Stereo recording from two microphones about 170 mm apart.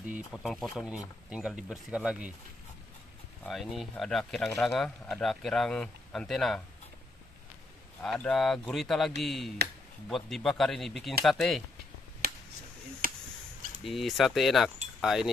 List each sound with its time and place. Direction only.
0.1 s speech: centre (ahead or behind)
3.4 s speech: centre (ahead or behind)
8.0 s speech: 5° left (ahead or behind)
12.2 s finger snapping: 65° right (ahead or behind)
13.0 s a sound: 55° right (ahead or behind)
13.8 s speech: centre (ahead or behind)